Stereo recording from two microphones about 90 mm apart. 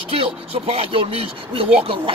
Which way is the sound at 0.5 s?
90° right.